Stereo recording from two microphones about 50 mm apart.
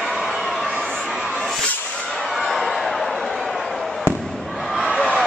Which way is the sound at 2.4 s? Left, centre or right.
Centre.